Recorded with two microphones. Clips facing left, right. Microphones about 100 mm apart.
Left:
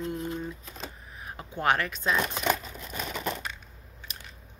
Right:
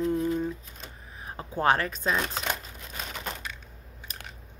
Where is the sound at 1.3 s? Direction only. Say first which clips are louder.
Right 2 dB; 30° right (ahead or behind).